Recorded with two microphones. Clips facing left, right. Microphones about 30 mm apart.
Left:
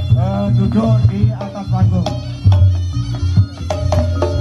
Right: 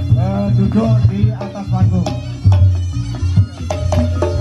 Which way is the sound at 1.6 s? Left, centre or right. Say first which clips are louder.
Even; centre.